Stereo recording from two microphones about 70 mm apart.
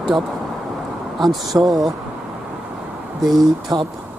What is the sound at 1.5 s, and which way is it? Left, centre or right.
Speech, right.